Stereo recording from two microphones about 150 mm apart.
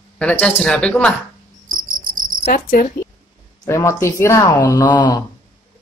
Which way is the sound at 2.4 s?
65° left (ahead or behind).